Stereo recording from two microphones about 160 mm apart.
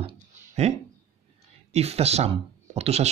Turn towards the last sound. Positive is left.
turn(degrees=-40)  # may be behind; listen again after turning